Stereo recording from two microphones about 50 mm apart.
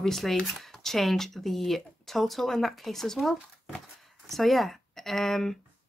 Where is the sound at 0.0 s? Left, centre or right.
Centre.